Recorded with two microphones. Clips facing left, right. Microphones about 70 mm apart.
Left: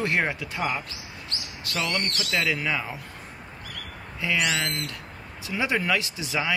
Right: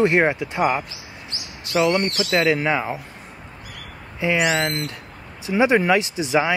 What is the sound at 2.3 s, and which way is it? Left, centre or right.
Speech, right.